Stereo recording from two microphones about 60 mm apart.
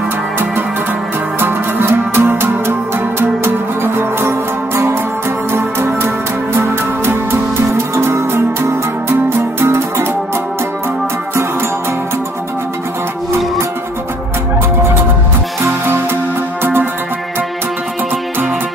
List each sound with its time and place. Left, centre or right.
1.4 s music: right